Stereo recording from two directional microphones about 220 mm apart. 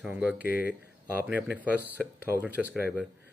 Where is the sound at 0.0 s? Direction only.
5° right (ahead or behind).